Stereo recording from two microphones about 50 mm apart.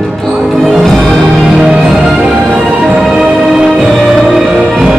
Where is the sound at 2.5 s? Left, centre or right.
Centre.